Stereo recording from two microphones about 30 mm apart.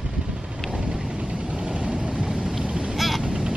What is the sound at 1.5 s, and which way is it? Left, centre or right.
Vehicle, right.